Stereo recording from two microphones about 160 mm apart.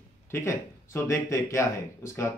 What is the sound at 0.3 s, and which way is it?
Speech, 15° left (ahead or behind).